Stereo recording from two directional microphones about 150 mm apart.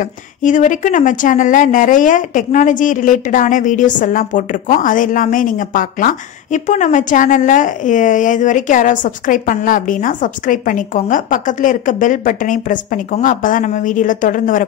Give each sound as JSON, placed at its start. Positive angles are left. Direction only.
{"t": 0.0, "sound": "speech", "side_deg": 55}